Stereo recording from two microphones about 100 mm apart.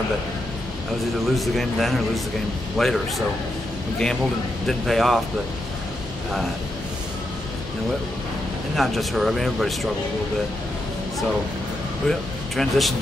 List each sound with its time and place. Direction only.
1.2 s speech: centre (ahead or behind)
4.6 s speech: centre (ahead or behind)
8.7 s speech: centre (ahead or behind)
12.1 s speech: centre (ahead or behind)